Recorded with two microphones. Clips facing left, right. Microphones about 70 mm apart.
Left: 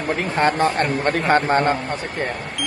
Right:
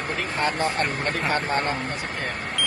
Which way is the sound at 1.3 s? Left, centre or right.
Left.